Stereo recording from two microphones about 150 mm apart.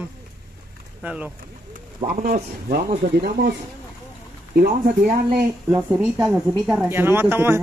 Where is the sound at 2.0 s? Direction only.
70° right (ahead or behind); by 3.5 s 90° right.